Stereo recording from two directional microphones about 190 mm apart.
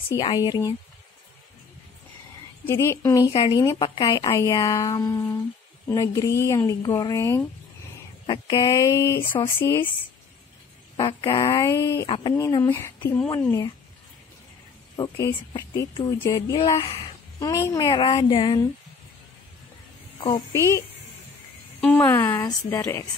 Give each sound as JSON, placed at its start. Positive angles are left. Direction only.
{"t": 0.1, "sound": "speech", "side_deg": 20}
{"t": 2.6, "sound": "speech", "side_deg": 15}
{"t": 11.0, "sound": "speech", "side_deg": 25}
{"t": 15.0, "sound": "speech", "side_deg": 20}
{"t": 20.2, "sound": "speech", "side_deg": 25}
{"t": 21.8, "sound": "speech", "side_deg": 10}